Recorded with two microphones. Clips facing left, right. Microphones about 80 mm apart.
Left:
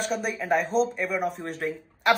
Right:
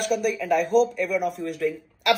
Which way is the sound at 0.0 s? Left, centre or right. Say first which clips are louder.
Right 4 dB; left.